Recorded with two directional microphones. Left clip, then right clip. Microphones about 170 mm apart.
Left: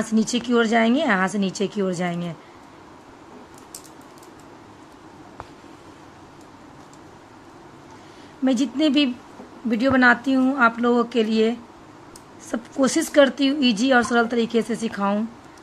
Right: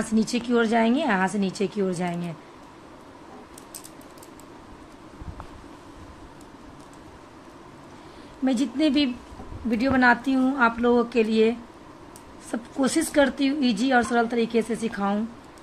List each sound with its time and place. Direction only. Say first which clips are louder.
0.1 s speech: left 2 dB; 10° left (ahead or behind)
8.5 s speech: left 3 dB; 10° left (ahead or behind)